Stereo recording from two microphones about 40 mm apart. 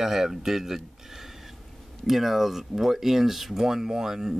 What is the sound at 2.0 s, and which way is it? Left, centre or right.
Speech, centre.